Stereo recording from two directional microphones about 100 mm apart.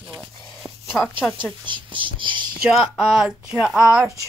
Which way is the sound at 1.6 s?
55° right (ahead or behind).